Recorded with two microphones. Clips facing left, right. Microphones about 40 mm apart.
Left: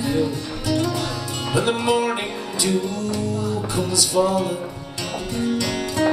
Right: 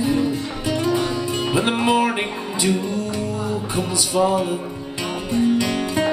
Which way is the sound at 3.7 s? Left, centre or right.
Right.